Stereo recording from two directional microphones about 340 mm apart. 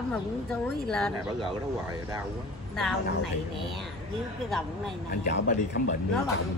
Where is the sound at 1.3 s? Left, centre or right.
Centre.